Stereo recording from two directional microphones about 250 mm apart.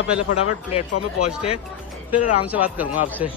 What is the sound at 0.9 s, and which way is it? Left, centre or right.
Speech, left.